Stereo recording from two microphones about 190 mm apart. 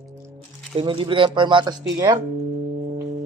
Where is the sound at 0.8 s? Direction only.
25° right (ahead or behind).